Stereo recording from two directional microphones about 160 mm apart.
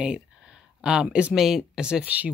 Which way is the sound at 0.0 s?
5° right (ahead or behind).